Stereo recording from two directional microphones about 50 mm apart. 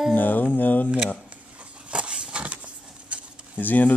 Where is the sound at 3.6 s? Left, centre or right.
Left.